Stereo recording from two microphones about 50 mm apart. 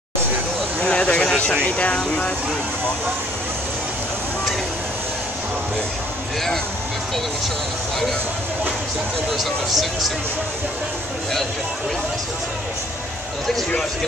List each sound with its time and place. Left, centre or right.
0.7 s vehicle: left
9.4 s speech: centre